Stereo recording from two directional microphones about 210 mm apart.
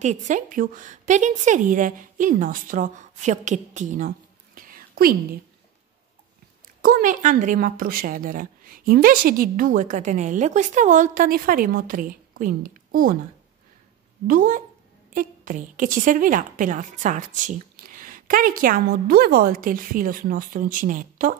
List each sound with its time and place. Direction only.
0.0 s speech: 35° right (ahead or behind)
4.6 s whispering: 40° right (ahead or behind)
6.8 s speech: 40° right (ahead or behind)
14.2 s speech: 40° right (ahead or behind)